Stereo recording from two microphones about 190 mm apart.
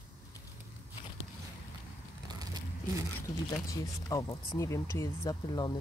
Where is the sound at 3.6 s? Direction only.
15° left (ahead or behind).